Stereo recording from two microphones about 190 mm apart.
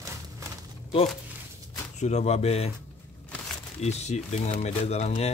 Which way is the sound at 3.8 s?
35° left (ahead or behind).